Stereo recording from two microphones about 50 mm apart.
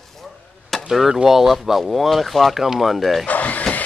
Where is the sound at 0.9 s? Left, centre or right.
Centre.